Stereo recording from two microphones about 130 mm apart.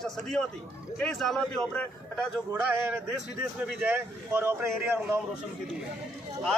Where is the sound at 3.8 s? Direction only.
15° right (ahead or behind).